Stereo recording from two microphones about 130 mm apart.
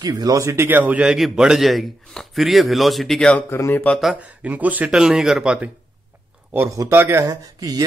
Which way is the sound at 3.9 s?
Centre (ahead or behind).